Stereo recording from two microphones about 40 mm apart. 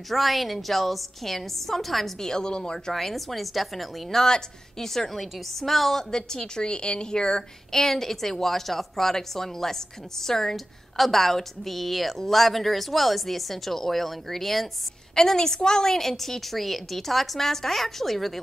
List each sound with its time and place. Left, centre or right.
0.1 s a woman's voice: centre
2.1 s a woman's voice: centre
2.9 s a woman's voice: centre
6.1 s a woman's voice: centre
7.8 s a woman's voice: centre